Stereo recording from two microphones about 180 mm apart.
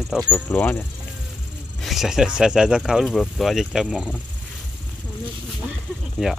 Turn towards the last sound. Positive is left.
turn(degrees=-5)  # may be behind; listen again after turning